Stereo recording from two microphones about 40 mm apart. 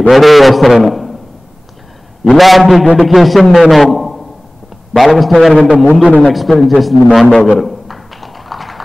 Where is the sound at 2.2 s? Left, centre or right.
Centre.